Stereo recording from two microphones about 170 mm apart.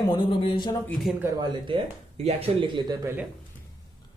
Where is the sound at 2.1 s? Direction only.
35° right (ahead or behind); by 3.3 s 15° right (ahead or behind).